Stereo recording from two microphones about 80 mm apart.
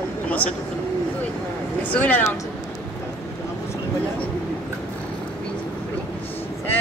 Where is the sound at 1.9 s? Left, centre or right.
Centre.